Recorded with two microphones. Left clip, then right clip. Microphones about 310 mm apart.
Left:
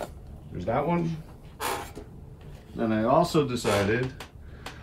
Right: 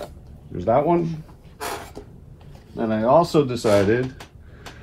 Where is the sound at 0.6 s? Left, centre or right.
Centre.